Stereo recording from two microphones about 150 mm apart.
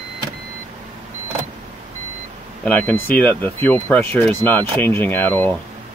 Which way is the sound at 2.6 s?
10° left (ahead or behind).